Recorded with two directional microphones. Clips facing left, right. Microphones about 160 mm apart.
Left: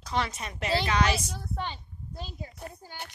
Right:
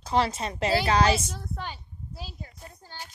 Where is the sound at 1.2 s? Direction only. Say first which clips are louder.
Left 1 dB; centre (ahead or behind).